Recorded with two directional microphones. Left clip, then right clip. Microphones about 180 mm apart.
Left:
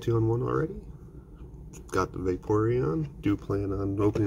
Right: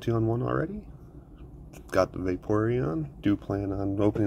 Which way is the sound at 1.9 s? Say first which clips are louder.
Right 3 dB; 5° right (ahead or behind).